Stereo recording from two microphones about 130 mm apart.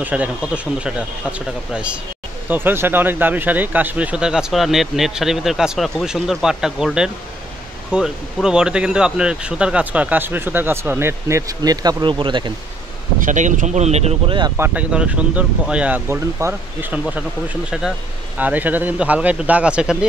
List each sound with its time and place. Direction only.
0.0 s speech: 10° right (ahead or behind); by 12.5 s 35° right (ahead or behind)
13.2 s speech: 75° right (ahead or behind); by 14.3 s 55° right (ahead or behind)
14.6 s speech: 10° right (ahead or behind)
18.4 s speech: 15° right (ahead or behind)